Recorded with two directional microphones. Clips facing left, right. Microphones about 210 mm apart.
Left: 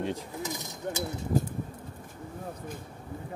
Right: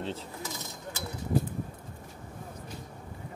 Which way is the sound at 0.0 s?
15° left (ahead or behind).